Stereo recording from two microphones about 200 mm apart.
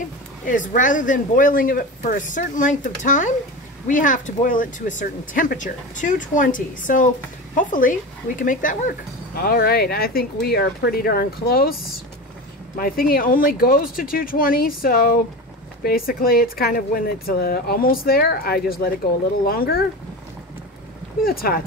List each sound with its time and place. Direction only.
0.5 s speech: 40° left (ahead or behind)
21.2 s speech: 50° left (ahead or behind)